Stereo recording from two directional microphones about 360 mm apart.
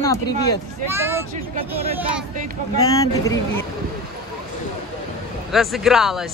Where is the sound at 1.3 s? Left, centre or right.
Centre.